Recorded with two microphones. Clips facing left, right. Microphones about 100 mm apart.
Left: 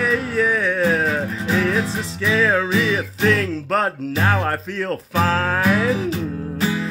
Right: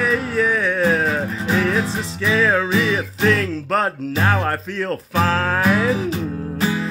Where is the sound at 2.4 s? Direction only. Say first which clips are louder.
Even; centre (ahead or behind).